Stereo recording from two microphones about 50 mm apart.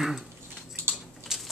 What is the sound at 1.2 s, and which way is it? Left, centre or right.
Typewriter, centre.